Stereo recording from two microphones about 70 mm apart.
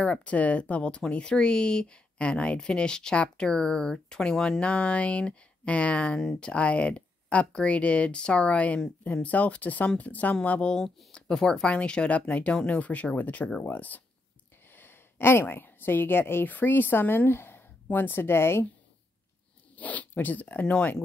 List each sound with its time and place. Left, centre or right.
0.0 s a woman's voice: centre; by 18.7 s left
19.7 s speech: left